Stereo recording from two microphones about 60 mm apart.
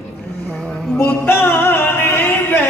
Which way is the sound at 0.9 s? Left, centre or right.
Left.